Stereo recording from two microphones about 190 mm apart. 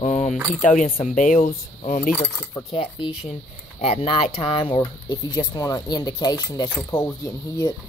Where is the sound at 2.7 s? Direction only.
30° left (ahead or behind).